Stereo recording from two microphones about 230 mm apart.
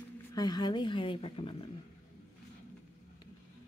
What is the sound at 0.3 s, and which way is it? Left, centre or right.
Speech, centre.